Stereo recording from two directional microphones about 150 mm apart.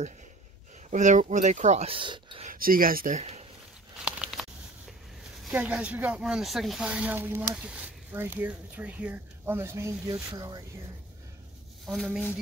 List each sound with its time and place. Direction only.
0.8 s speech: 55° right (ahead or behind); by 2.4 s 35° right (ahead or behind)
2.4 s speech: 70° right (ahead or behind); by 3.4 s 50° right (ahead or behind)
4.0 s a sound: 5° right (ahead or behind)
5.5 s speech: 10° right (ahead or behind); by 10.6 s 25° right (ahead or behind)
11.8 s speech: centre (ahead or behind)